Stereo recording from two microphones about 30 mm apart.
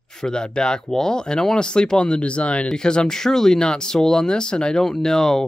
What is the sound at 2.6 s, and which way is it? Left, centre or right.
Speech, left.